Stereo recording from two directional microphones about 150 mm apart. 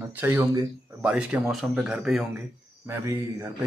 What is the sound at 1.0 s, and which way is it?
Speech, 5° right (ahead or behind).